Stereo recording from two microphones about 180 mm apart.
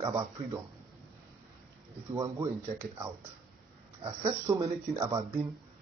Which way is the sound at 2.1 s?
20° right (ahead or behind).